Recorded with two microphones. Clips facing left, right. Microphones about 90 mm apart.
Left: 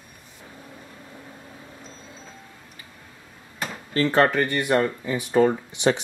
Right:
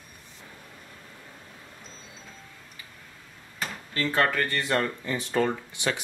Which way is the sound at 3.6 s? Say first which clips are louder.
Left 6 dB; 25° left (ahead or behind).